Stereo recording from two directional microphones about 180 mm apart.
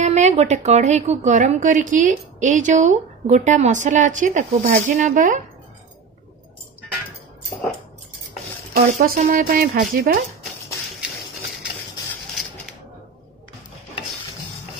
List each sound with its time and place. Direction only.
0.0 s a woman's voice: 40° right (ahead or behind)
8.7 s a woman's voice: 55° right (ahead or behind)